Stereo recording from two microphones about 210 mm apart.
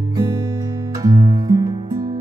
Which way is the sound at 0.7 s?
20° right (ahead or behind).